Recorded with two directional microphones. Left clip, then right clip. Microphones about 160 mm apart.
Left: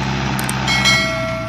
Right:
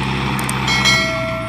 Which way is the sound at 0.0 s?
20° left (ahead or behind).